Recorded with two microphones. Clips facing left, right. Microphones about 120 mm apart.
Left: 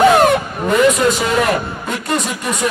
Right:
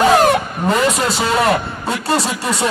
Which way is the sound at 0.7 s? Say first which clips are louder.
Left 4 dB; 30° right (ahead or behind).